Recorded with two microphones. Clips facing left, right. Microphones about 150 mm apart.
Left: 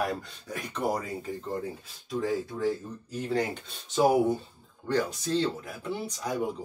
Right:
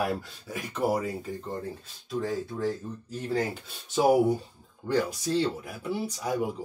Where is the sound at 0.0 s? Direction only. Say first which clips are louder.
Right 1 dB; 5° right (ahead or behind).